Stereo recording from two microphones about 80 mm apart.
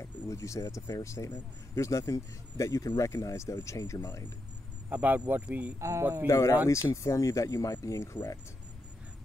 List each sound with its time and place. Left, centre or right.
0.0 s speech: left
4.9 s speech: centre
5.8 s speech: right
6.2 s speech: left